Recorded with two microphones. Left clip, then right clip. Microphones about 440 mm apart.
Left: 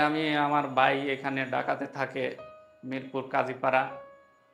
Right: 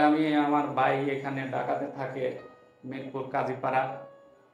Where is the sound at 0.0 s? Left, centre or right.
Left.